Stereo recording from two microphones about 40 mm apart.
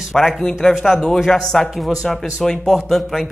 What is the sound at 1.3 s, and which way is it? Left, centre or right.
A man's voice, centre.